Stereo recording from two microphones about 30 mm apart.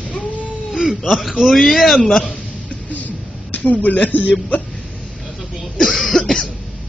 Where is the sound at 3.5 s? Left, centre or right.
Left.